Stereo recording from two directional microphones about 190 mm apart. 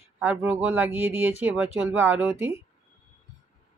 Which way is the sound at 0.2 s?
10° right (ahead or behind).